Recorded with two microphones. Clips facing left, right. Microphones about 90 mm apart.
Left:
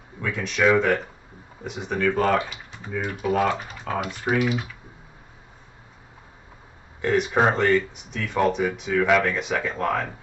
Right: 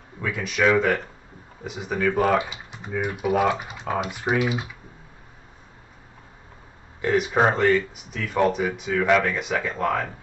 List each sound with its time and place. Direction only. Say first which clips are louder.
0.2 s speech: even; 5° right (ahead or behind)
7.0 s speech: even; centre (ahead or behind)